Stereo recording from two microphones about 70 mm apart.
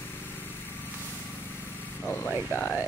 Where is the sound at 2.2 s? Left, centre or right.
Centre.